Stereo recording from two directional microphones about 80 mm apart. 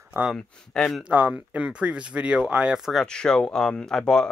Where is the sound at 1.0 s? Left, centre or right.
Right; by 3.1 s centre.